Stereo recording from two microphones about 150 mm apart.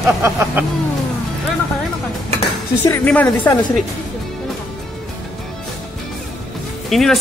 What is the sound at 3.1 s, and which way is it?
Speech, 10° left (ahead or behind).